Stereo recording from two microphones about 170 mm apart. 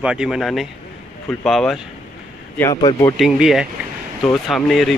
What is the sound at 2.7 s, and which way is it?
Speech, 25° left (ahead or behind).